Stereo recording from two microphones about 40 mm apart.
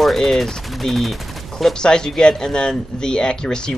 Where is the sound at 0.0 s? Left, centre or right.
Centre.